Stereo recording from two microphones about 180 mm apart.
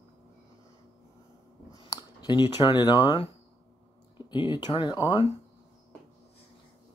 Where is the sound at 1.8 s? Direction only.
25° left (ahead or behind).